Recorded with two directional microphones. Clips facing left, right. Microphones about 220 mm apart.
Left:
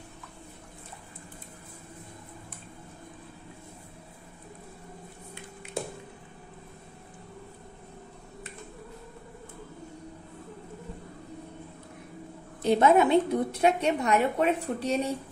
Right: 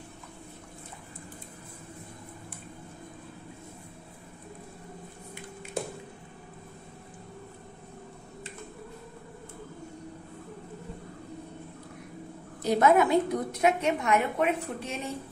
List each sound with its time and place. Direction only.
12.6 s a woman's voice: 25° left (ahead or behind)